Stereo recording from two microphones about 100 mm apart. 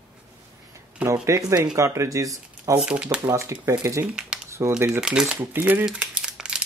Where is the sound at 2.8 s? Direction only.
10° right (ahead or behind).